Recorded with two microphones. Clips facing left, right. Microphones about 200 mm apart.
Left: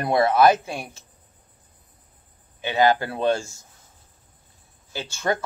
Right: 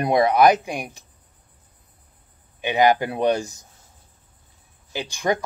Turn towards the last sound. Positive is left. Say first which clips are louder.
# right 2 dB
turn(degrees=-15)  # may be behind; listen again after turning